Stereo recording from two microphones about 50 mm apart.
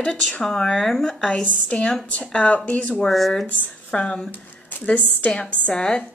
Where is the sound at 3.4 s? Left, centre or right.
Left.